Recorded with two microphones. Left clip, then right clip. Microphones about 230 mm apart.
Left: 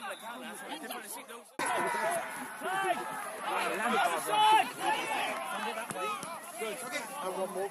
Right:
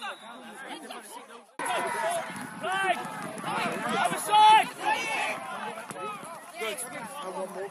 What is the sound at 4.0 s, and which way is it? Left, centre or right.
Run, right.